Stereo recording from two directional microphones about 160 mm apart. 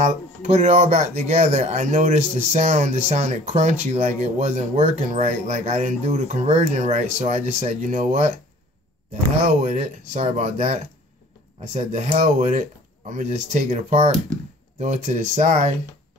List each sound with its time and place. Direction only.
0.0 s speech: 50° right (ahead or behind)
9.6 s speech: 45° right (ahead or behind)